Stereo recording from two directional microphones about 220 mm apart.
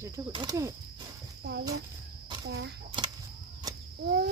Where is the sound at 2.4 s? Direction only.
50° right (ahead or behind).